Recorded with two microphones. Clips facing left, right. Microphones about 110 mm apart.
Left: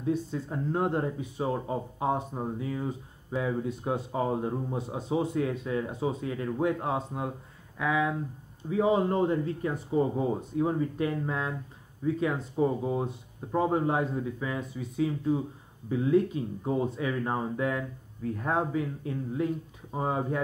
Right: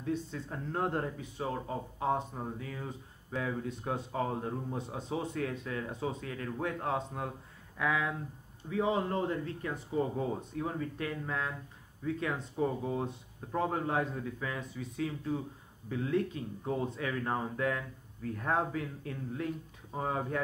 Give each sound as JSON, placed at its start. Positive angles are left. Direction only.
{"t": 0.0, "sound": "speech", "side_deg": 15}
{"t": 8.6, "sound": "speech", "side_deg": 20}